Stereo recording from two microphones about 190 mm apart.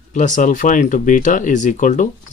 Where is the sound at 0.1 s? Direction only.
40° left (ahead or behind).